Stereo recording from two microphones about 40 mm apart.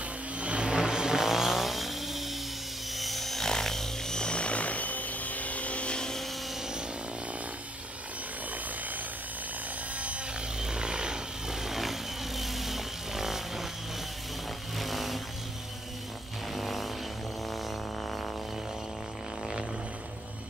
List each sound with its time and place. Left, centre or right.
0.4 s vehicle: right; by 2.2 s centre
3.0 s helicopter: centre
3.4 s vehicle: centre; by 5.9 s left
10.6 s vehicle: centre
11.6 s vehicle: centre
14.8 s vehicle: centre
16.5 s vehicle: centre